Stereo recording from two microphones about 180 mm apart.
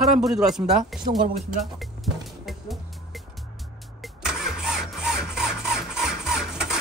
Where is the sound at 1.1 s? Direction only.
40° right (ahead or behind).